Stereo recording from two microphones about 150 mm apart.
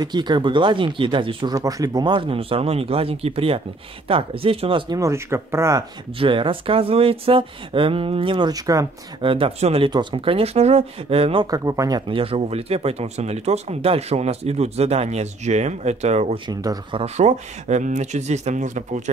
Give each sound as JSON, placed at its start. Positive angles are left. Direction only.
{"t": 0.0, "sound": "speech", "side_deg": -30}
{"t": 4.9, "sound": "speech", "side_deg": -20}
{"t": 6.1, "sound": "speech", "side_deg": -35}
{"t": 9.2, "sound": "speech", "side_deg": -35}
{"t": 11.5, "sound": "speech", "side_deg": -20}
{"t": 12.1, "sound": "speech", "side_deg": -40}
{"t": 16.4, "sound": "speech", "side_deg": -30}
{"t": 17.0, "sound": "speech", "side_deg": -50}